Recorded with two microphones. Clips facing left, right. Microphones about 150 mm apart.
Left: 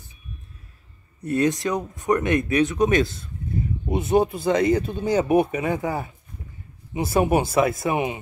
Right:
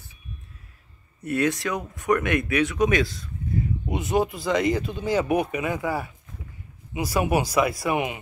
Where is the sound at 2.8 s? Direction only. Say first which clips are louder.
Left 2 dB; 25° left (ahead or behind).